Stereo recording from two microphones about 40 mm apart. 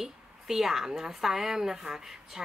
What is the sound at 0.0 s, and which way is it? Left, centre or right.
Speech, centre.